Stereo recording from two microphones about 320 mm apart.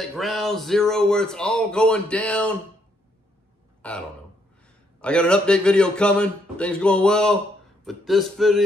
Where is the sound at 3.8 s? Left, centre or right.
Centre.